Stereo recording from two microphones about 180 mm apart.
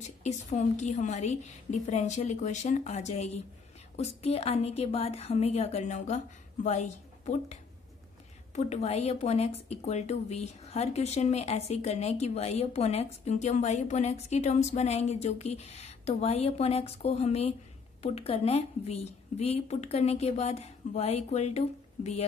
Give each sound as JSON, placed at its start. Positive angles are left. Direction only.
{"t": 0.2, "sound": "a woman's voice", "side_deg": 40}
{"t": 8.5, "sound": "a woman's voice", "side_deg": 40}